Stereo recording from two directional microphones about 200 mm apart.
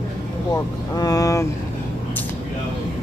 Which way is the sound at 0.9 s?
15° left (ahead or behind).